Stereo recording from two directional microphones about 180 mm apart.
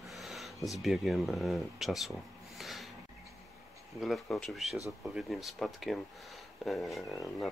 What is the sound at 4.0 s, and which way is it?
Speech, centre (ahead or behind).